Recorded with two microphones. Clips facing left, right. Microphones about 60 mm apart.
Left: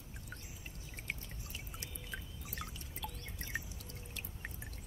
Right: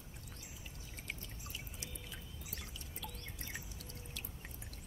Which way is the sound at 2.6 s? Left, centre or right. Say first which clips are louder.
Left 4 dB; left.